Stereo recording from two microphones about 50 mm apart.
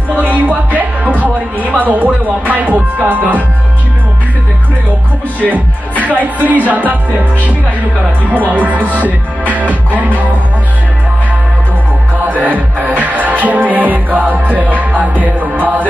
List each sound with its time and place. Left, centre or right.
0.1 s music: right
5.4 s music: right
12.3 s music: right